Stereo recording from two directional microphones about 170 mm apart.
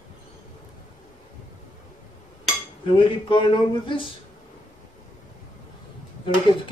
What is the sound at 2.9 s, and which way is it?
Speech, 30° left (ahead or behind).